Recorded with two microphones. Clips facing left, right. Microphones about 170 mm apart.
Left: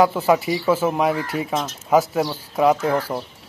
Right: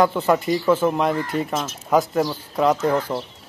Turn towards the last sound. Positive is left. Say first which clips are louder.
# even
turn(degrees=10)  # may be behind; listen again after turning